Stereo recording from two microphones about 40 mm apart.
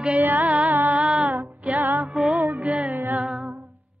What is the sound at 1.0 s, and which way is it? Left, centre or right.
Child singing, right.